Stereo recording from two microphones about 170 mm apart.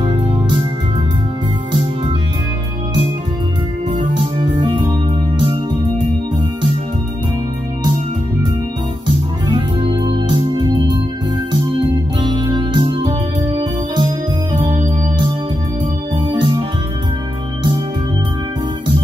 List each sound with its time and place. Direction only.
3.9 s music: 30° right (ahead or behind)
9.0 s music: 30° right (ahead or behind)
12.2 s music: 25° right (ahead or behind)
16.3 s music: 30° right (ahead or behind)